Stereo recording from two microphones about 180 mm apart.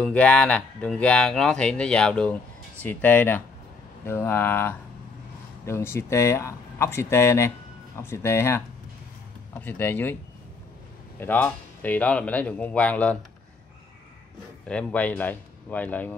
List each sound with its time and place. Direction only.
0.0 s speech: 5° left (ahead or behind)
11.1 s speech: 10° left (ahead or behind)
14.7 s speech: 5° left (ahead or behind)